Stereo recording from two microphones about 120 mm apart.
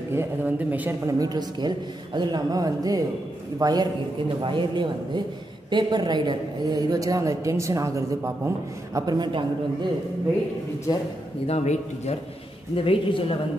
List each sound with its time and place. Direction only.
0.1 s a man's voice: 20° right (ahead or behind)
1.0 s a man's voice: 35° right (ahead or behind)
9.0 s a man's voice: 35° right (ahead or behind)
11.4 s a man's voice: 65° left (ahead or behind)
12.7 s speech: 50° left (ahead or behind)